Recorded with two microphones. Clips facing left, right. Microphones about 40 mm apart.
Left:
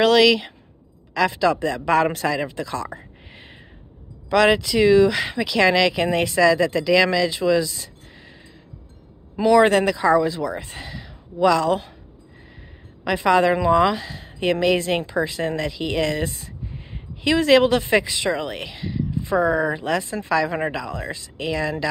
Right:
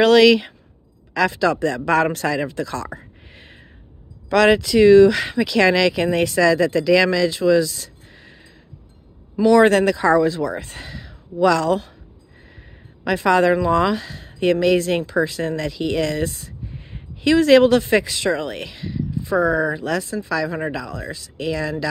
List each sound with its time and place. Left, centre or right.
0.0 s speech: centre
2.5 s a sound: centre
4.3 s speech: centre
9.4 s speech: centre
13.0 s speech: centre
19.2 s speech: left